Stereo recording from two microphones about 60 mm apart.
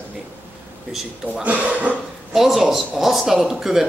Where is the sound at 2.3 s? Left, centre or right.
Centre.